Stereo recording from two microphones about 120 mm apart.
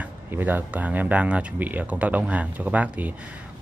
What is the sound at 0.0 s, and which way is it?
Speech, 15° right (ahead or behind).